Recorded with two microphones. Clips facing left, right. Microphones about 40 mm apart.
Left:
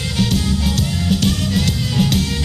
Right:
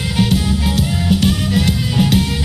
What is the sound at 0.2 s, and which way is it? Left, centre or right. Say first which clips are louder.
Music: right 2 dB; centre.